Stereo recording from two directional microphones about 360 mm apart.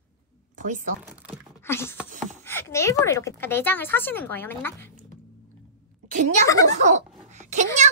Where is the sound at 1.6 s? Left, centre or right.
Centre.